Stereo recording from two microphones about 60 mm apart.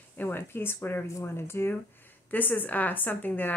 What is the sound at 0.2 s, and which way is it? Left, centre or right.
Speech, left.